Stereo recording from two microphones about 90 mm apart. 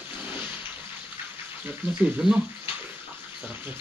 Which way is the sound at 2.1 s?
10° right (ahead or behind).